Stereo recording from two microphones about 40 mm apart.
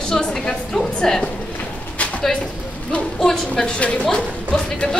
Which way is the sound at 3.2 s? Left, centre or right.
Centre.